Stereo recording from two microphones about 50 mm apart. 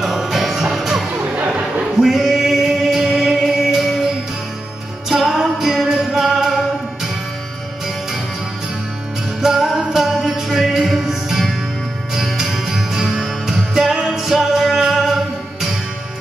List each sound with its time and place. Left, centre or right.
0.0 s music: centre
1.2 s music: right
2.0 s music: centre
9.4 s music: centre